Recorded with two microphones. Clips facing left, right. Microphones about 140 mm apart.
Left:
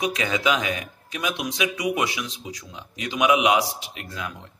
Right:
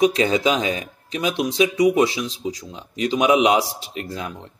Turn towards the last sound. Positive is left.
turn(degrees=-35)  # may be behind; listen again after turning